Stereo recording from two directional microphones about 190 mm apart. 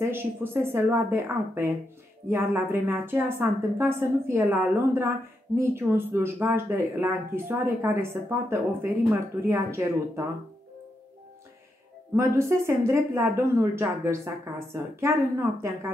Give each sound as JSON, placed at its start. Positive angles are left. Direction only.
{"t": 0.0, "sound": "speech", "side_deg": -10}
{"t": 12.2, "sound": "speech", "side_deg": -15}